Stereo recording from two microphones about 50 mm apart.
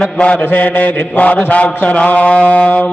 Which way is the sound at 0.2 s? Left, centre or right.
Left.